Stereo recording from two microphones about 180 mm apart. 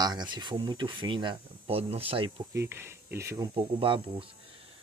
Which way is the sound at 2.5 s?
15° right (ahead or behind).